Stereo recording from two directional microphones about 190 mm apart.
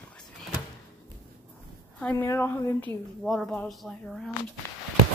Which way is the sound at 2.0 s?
10° left (ahead or behind).